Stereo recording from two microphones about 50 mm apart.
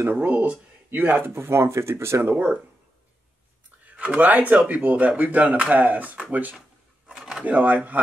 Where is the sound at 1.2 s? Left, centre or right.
Right.